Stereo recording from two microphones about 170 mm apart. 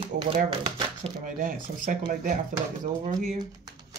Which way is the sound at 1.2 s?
50° right (ahead or behind).